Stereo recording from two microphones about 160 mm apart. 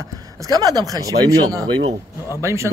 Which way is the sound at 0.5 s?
25° right (ahead or behind).